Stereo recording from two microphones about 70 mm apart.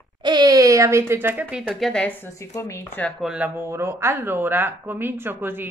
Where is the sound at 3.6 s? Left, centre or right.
Right.